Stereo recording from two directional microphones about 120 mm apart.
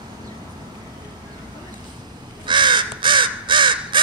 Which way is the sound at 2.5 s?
40° right (ahead or behind).